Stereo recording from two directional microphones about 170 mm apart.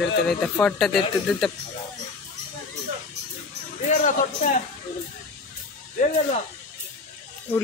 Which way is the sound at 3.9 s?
50° left (ahead or behind).